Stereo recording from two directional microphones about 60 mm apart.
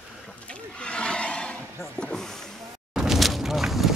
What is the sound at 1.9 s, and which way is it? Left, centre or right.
Snake, centre.